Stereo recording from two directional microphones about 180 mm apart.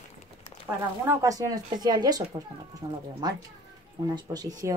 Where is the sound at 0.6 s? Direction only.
10° right (ahead or behind).